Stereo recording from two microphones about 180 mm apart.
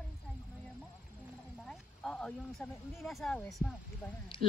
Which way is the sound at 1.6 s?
Centre (ahead or behind).